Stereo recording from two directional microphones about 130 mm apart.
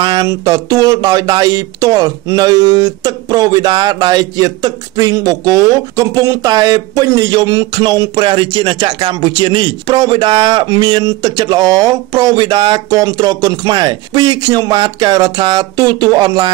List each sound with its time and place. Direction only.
0.0 s speech: 35° right (ahead or behind)